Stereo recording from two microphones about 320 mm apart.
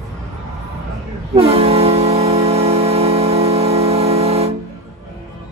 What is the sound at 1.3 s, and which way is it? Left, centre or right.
Music, centre.